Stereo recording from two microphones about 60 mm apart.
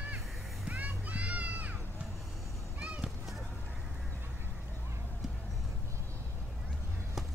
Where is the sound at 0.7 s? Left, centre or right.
Right.